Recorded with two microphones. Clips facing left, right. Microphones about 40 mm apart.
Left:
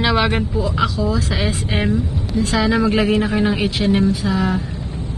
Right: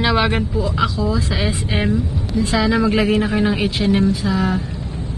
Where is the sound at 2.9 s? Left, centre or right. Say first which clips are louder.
Even; centre.